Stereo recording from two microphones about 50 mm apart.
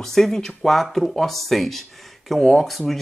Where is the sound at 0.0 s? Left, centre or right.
Centre.